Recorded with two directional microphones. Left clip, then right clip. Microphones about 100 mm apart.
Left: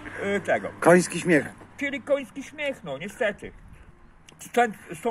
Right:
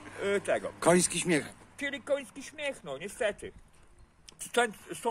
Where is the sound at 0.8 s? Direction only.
90° right.